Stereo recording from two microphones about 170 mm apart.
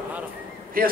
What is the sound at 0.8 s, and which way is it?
Speech, 55° right (ahead or behind).